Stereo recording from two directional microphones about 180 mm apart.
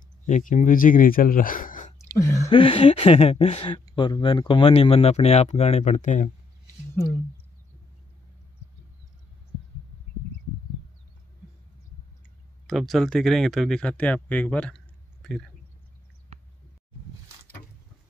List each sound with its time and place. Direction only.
0.3 s speech: 45° left (ahead or behind)
2.0 s a sound: 15° left (ahead or behind)
2.5 s speech: 30° left (ahead or behind)
12.6 s speech: centre (ahead or behind)